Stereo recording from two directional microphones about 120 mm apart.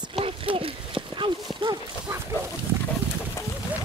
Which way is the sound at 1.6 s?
45° right (ahead or behind).